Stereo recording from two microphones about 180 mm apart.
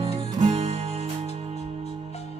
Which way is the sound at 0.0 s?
35° right (ahead or behind).